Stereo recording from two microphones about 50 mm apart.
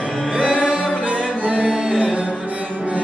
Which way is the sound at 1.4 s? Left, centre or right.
Right.